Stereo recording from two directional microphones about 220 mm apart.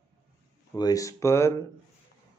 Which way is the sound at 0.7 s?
15° left (ahead or behind).